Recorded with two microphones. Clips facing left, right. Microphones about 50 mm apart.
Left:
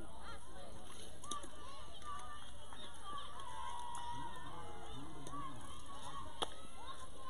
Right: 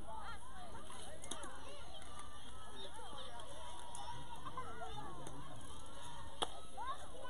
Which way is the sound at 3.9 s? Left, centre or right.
Left.